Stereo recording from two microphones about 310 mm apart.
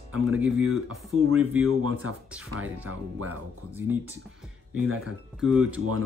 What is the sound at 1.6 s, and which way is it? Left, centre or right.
Speech, right.